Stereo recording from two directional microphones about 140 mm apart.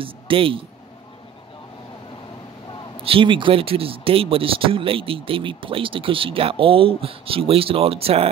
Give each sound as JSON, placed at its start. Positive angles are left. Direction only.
{"t": 0.0, "sound": "speech", "side_deg": -40}
{"t": 3.0, "sound": "speech", "side_deg": -40}